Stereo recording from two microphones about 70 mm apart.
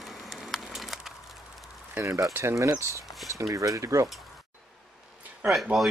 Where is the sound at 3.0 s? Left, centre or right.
Centre.